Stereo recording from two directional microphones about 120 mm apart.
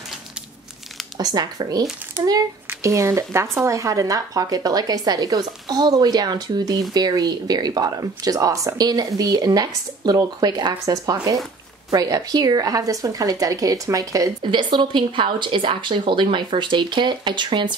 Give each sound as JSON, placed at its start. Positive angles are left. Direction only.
{"t": 1.2, "sound": "a woman's voice", "side_deg": -35}
{"t": 14.4, "sound": "speech", "side_deg": -40}